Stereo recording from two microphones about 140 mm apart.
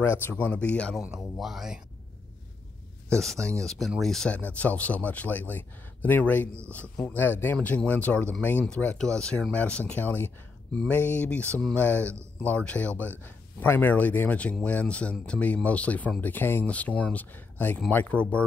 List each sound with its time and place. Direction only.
0.2 s speech: 10° left (ahead or behind)
1.0 s speech: 5° right (ahead or behind)
3.1 s speech: 5° left (ahead or behind)